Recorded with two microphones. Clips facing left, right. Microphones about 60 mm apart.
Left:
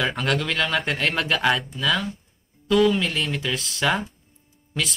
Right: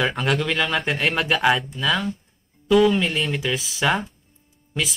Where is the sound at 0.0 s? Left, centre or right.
Centre.